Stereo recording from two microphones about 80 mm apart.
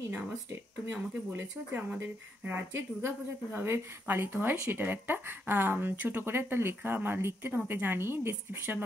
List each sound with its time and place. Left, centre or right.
0.1 s speech: right